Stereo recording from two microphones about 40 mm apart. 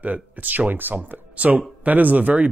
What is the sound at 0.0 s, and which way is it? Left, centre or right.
Speech, right.